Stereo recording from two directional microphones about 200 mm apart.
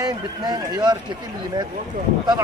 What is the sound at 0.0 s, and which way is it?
Speech, 20° right (ahead or behind).